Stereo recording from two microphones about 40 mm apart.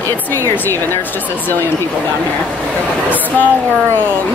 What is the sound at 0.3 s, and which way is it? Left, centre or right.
Speech, left.